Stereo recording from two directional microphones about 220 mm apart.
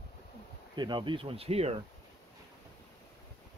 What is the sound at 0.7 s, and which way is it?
Speech, 20° right (ahead or behind).